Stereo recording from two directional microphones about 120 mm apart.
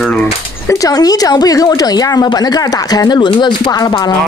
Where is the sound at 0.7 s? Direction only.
30° left (ahead or behind).